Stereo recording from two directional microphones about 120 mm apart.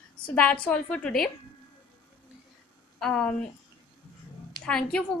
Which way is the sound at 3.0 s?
10° left (ahead or behind).